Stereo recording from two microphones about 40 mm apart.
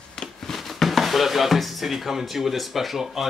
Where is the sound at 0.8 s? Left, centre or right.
Centre.